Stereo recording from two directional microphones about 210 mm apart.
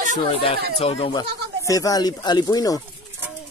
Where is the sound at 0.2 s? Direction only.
25° left (ahead or behind).